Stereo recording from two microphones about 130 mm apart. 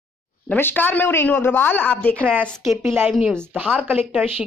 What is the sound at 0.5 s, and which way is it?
A woman's voice, 15° left (ahead or behind).